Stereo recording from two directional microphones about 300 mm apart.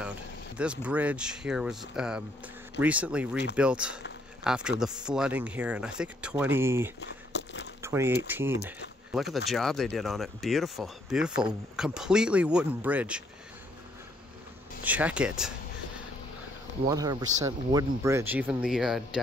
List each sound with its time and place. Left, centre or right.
0.6 s speech: centre
7.0 s a sound: left
7.8 s speech: centre
14.8 s speech: centre
16.8 s speech: centre